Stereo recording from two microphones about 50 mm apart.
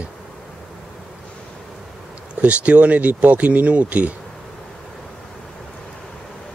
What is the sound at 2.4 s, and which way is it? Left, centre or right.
Speech, right.